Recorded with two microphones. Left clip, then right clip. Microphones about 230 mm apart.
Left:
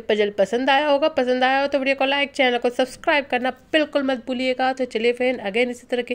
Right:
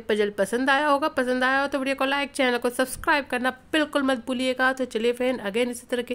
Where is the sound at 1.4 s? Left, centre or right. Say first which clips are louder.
Left 2 dB; right.